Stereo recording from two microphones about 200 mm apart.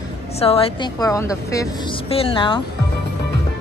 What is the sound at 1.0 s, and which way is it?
A woman's voice, 15° left (ahead or behind).